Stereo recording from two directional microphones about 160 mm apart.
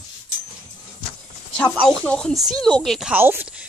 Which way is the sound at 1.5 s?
5° left (ahead or behind).